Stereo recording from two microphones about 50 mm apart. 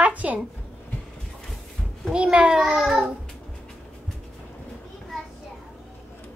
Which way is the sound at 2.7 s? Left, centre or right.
Centre.